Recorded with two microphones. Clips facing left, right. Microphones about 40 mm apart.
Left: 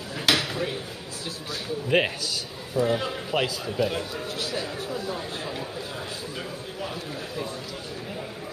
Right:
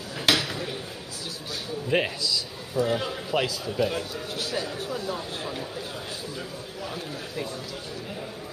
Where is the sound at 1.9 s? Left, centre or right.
Centre.